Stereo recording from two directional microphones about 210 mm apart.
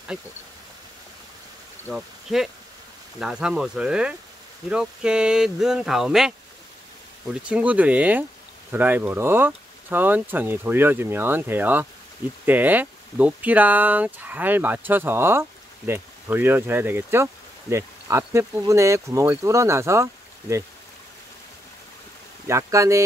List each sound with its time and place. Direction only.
1.9 s speech: 5° right (ahead or behind)
7.4 s speech: 5° right (ahead or behind)
22.5 s speech: 15° right (ahead or behind)